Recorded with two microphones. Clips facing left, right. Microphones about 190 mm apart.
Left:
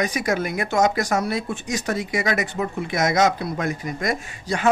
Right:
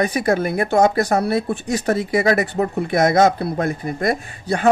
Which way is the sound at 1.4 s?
60° right (ahead or behind).